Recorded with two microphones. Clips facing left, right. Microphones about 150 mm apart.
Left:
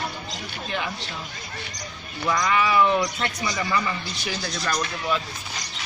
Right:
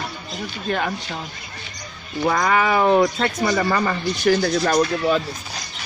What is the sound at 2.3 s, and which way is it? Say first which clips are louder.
Speech: right 3 dB; 50° right (ahead or behind).